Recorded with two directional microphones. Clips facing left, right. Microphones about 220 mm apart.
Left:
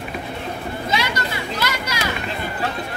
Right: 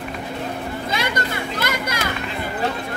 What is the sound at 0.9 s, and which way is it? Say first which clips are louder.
Children playing: even; 50° right (ahead or behind).